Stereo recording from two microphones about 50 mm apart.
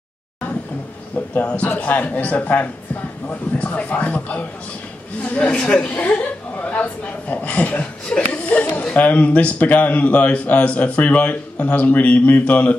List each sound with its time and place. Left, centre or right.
1.1 s a man's voice: left
5.6 s speech: centre
5.9 s a man's voice: left
8.3 s a sound: left
8.9 s a man's voice: left